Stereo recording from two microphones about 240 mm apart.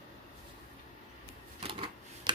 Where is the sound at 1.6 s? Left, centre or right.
Right.